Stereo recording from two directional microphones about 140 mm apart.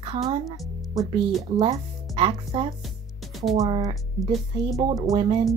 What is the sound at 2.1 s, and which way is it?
Speech, 40° right (ahead or behind).